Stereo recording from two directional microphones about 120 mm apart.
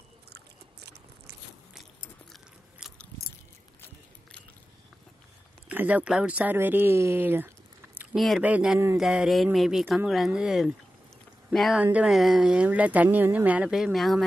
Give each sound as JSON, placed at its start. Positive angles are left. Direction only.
{"t": 2.8, "sound": "biting", "side_deg": -5}
{"t": 5.7, "sound": "speech", "side_deg": -10}
{"t": 11.8, "sound": "speech", "side_deg": -10}